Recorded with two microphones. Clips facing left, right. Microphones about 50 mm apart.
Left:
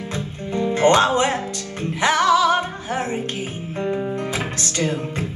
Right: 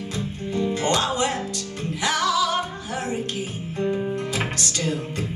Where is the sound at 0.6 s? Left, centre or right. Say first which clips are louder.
Left 7 dB; left.